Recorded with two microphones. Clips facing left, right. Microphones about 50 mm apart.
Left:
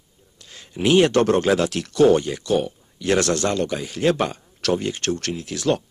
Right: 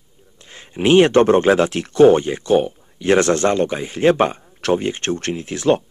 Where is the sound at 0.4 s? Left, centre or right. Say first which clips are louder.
Right 3 dB; right.